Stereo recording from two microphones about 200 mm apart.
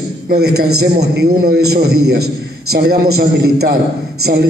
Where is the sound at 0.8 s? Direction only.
50° right (ahead or behind).